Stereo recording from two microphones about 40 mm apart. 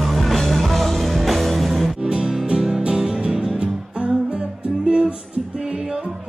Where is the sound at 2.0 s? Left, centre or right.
Centre.